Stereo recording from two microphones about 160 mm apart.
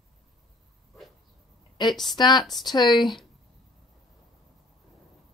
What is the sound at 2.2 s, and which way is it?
Speech, 25° left (ahead or behind).